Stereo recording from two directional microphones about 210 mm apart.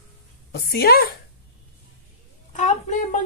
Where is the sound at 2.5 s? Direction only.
35° left (ahead or behind).